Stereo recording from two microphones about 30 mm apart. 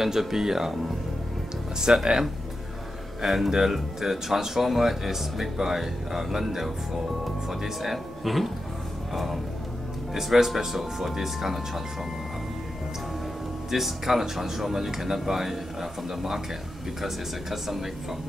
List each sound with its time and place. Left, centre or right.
0.0 s speech: centre
1.9 s speech: right
3.3 s speech: centre
13.7 s speech: centre